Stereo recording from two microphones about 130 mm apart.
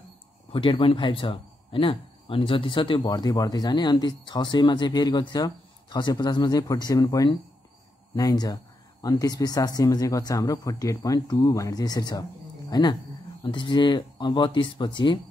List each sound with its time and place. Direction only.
0.5 s speech: 40° left (ahead or behind)